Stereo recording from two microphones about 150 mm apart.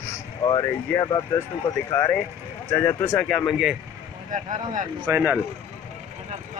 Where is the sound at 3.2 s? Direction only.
5° left (ahead or behind).